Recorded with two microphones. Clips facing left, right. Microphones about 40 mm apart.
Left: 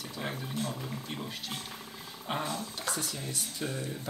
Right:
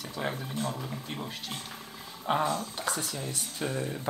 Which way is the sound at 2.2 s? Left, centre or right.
Centre.